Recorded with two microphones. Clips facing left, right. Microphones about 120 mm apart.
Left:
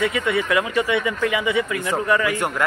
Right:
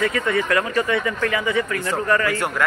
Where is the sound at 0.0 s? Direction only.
10° left (ahead or behind).